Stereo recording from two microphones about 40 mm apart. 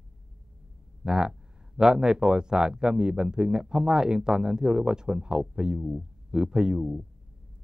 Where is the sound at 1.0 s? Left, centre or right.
Centre.